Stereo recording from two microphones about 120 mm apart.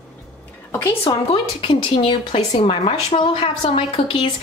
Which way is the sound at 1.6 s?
45° left (ahead or behind).